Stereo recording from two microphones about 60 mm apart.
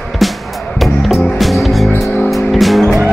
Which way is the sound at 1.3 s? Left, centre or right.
Centre.